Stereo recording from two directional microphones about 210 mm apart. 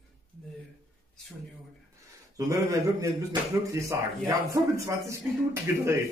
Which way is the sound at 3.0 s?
15° right (ahead or behind).